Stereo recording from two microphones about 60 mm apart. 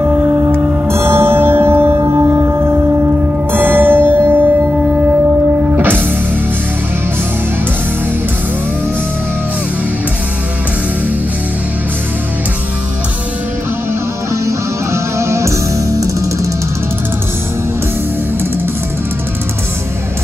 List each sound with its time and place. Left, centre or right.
0.8 s music: right
3.5 s music: right
5.8 s music: right
14.3 s music: right